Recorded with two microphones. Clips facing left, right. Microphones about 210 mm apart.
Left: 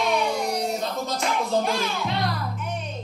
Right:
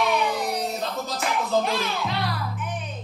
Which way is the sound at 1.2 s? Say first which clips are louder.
Even; centre (ahead or behind).